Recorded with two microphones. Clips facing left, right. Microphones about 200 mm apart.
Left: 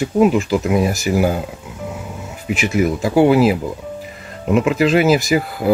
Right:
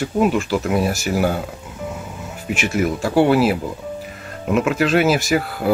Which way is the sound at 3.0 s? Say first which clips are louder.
Left 2 dB; 10° left (ahead or behind).